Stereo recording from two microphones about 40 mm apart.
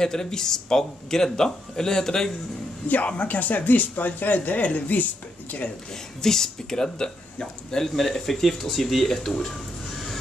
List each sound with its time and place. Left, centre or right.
0.0 s speech: centre
3.1 s speech: left
6.2 s speech: centre